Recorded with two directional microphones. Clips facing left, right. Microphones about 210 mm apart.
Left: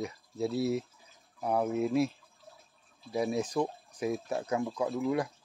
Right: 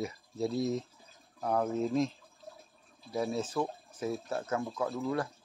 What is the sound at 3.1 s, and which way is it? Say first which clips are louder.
Speech: left 2 dB; 15° left (ahead or behind).